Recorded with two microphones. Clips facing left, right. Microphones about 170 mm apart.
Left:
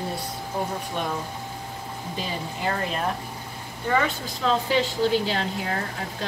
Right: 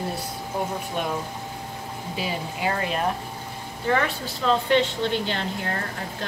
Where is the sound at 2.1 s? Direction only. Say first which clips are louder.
Right 2 dB; 5° right (ahead or behind).